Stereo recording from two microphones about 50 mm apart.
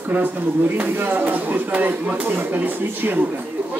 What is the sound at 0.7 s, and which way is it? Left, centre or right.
Speech, right.